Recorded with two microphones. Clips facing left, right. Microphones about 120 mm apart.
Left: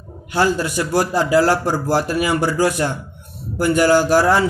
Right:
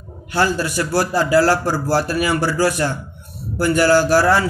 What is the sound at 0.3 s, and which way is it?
A man's voice, 20° left (ahead or behind).